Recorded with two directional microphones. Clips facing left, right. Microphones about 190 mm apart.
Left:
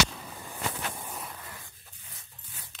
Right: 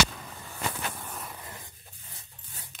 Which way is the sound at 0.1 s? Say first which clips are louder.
Left 1 dB; 5° left (ahead or behind).